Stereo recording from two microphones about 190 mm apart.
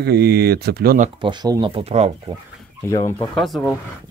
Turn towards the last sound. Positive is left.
turn(degrees=0)  # may be behind; listen again after turning